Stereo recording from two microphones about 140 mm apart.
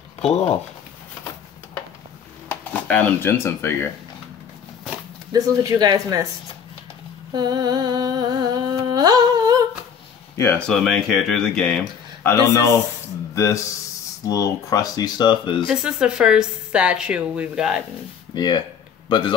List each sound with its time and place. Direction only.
0.2 s speech: 50° left (ahead or behind)
2.4 s speech: 10° left (ahead or behind)
5.3 s speech: 25° right (ahead or behind)
7.3 s humming: 30° right (ahead or behind)
10.3 s speech: 20° left (ahead or behind)
10.7 s speech: centre (ahead or behind); by 15.6 s 35° left (ahead or behind)
15.6 s speech: 5° right (ahead or behind)
18.3 s a man's voice: 30° left (ahead or behind)